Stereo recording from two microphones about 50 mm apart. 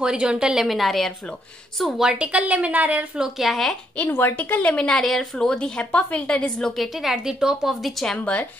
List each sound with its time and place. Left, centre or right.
0.0 s a woman's voice: centre
0.7 s a woman's voice: centre
2.1 s a woman's voice: right
3.2 s a woman's voice: centre
4.1 s speech: left
4.4 s speech: left
4.7 s a woman's voice: centre
7.0 s a woman's voice: centre
7.8 s speech: centre